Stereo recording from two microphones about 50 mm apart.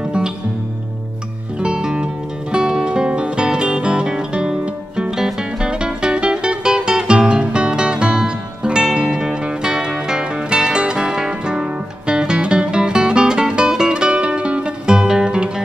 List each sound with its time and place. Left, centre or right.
1.6 s music: centre